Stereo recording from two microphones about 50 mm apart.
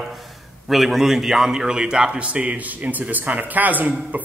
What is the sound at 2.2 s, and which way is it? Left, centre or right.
A man's voice, right.